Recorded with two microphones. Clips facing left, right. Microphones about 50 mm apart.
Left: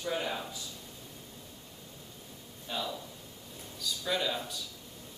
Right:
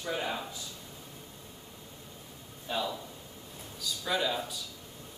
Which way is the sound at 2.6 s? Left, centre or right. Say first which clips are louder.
Right 3 dB; centre.